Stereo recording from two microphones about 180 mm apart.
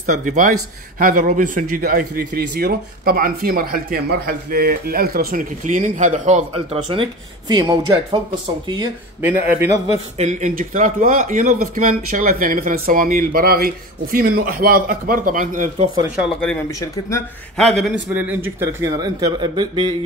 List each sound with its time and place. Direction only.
0.0 s speech: 45° right (ahead or behind)
6.9 s speech: 25° right (ahead or behind)
9.2 s speech: 10° right (ahead or behind)
10.1 s speech: 40° right (ahead or behind)
16.8 s speech: 15° left (ahead or behind)
17.6 s speech: centre (ahead or behind); by 19.9 s 25° right (ahead or behind)